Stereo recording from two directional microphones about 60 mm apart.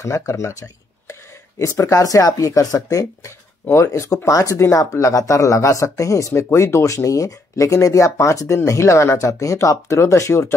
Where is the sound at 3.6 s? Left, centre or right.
Left.